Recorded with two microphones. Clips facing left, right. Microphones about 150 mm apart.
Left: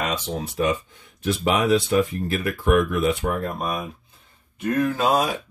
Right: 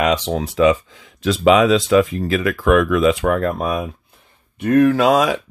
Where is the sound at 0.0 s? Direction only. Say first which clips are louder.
Right 8 dB; 90° right.